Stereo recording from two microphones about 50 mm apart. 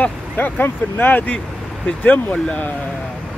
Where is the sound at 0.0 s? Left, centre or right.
Left.